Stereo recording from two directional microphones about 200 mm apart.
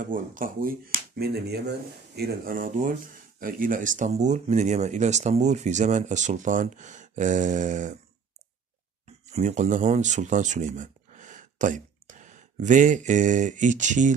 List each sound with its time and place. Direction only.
0.0 s speech: 40° right (ahead or behind)
9.3 s speech: 35° right (ahead or behind)